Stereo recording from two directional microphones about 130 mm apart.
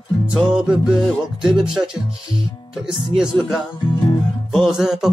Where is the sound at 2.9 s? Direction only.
5° right (ahead or behind).